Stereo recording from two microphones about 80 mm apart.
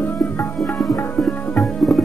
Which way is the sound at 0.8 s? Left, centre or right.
Centre.